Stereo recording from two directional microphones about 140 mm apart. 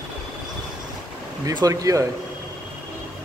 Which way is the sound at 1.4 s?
25° right (ahead or behind).